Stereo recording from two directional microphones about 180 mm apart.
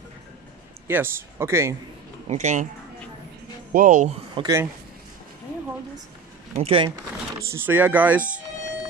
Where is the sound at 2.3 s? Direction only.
40° right (ahead or behind).